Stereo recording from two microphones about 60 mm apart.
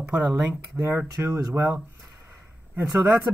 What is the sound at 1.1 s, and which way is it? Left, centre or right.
Speech, right.